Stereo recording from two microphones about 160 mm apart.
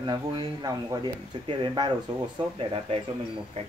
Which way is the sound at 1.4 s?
30° right (ahead or behind).